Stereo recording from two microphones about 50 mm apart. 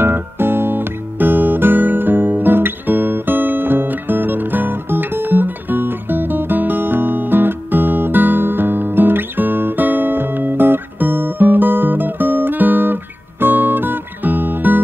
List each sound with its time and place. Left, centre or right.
0.0 s music: right